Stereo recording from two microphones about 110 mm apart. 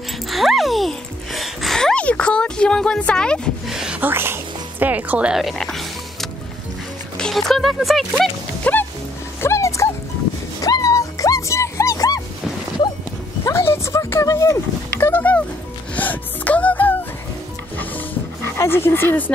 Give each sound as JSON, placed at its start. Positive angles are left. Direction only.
{"t": 0.3, "sound": "a sound", "side_deg": 0}
{"t": 3.6, "sound": "a sound", "side_deg": -5}
{"t": 4.0, "sound": "speech", "side_deg": -20}
{"t": 8.6, "sound": "music", "side_deg": 15}
{"t": 9.4, "sound": "dog", "side_deg": 25}
{"t": 10.6, "sound": "music", "side_deg": 30}
{"t": 13.5, "sound": "music", "side_deg": 25}
{"t": 18.6, "sound": "speech", "side_deg": 20}